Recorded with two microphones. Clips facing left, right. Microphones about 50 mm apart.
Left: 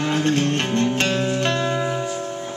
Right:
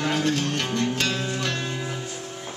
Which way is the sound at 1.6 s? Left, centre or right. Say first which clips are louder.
Left 9 dB; left.